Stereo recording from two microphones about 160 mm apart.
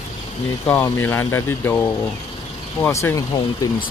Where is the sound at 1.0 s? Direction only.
15° left (ahead or behind).